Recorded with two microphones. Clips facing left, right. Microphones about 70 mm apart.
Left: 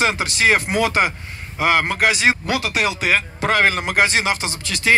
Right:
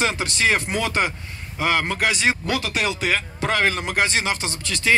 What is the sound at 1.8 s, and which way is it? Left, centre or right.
Speech, left.